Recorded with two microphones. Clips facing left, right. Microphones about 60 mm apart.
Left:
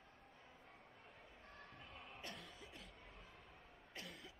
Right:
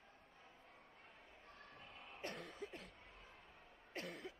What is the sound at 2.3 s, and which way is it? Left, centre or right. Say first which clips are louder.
Cough: right 6 dB; right.